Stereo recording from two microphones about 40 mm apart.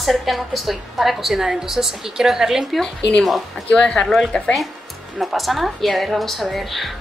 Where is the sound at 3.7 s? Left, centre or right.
Left.